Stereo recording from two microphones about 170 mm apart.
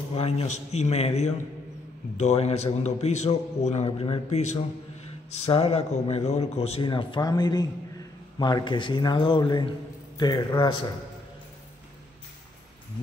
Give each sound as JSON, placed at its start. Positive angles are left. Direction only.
{"t": 0.1, "sound": "a man's voice", "side_deg": 35}